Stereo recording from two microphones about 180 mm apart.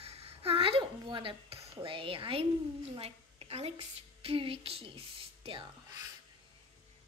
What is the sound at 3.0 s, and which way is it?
A woman's voice, 35° right (ahead or behind).